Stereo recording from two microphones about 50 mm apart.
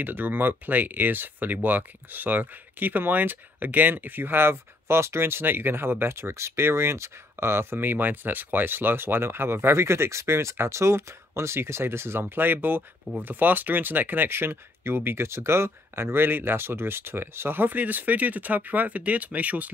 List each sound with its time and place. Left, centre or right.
0.0 s speech: right
7.8 s speech: right
12.4 s speech: right
14.3 s speech: right